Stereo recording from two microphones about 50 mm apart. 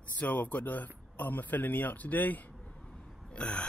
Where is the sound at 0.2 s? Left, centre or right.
Left.